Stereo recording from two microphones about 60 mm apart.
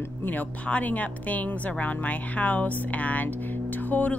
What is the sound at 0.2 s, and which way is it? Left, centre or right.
Speech, left.